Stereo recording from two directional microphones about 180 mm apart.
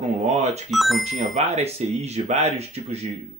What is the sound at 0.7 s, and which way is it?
Speech, centre (ahead or behind).